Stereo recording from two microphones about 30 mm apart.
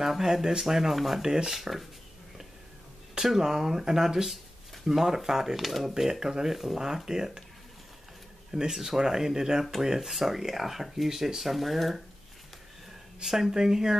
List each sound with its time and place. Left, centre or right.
0.0 s speech: centre
1.2 s speech: centre
1.5 s speech: centre
3.3 s speech: centre
5.7 s speech: centre
6.0 s speech: centre
8.5 s speech: right; by 12.0 s centre
13.2 s speech: centre